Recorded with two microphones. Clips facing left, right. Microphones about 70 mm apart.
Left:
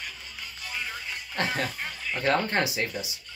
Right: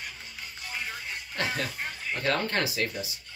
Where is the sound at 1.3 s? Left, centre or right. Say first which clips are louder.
Left 2 dB; left.